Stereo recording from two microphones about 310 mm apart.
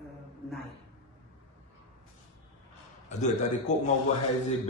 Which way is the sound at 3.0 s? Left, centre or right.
Left.